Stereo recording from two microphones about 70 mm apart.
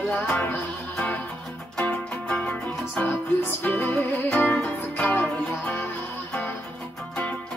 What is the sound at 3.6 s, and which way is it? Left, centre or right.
Music, left.